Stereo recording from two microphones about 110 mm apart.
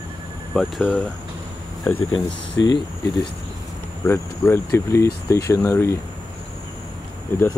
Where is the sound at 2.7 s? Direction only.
45° left (ahead or behind).